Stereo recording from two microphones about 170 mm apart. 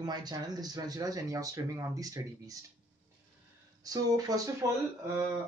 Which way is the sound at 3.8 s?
20° right (ahead or behind).